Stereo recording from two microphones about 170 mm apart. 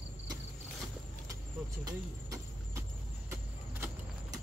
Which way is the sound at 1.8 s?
20° right (ahead or behind).